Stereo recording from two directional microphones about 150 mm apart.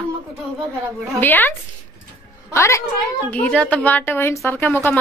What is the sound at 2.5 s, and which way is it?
A woman's voice, 20° left (ahead or behind).